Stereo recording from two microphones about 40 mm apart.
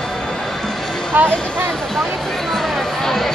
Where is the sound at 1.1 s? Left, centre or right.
Right.